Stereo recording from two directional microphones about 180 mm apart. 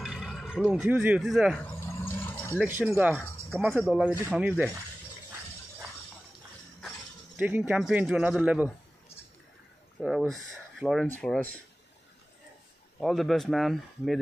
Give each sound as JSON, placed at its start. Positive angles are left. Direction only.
{"t": 0.0, "sound": "speech", "side_deg": 0}
{"t": 1.6, "sound": "a sound", "side_deg": 15}
{"t": 2.8, "sound": "speech", "side_deg": -10}
{"t": 7.3, "sound": "speech", "side_deg": -10}
{"t": 10.0, "sound": "speech", "side_deg": 0}
{"t": 13.0, "sound": "speech", "side_deg": 0}